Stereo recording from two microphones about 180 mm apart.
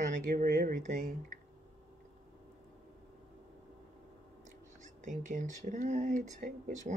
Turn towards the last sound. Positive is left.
turn(degrees=-45)  # may be behind; listen again after turning